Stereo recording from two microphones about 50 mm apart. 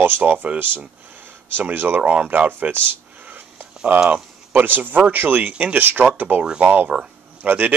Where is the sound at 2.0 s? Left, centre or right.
Right.